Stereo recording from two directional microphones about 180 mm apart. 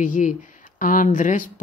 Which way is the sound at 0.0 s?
45° left (ahead or behind).